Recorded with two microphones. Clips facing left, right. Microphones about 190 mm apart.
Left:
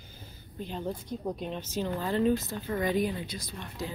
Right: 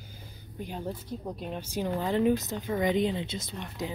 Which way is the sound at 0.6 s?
10° right (ahead or behind).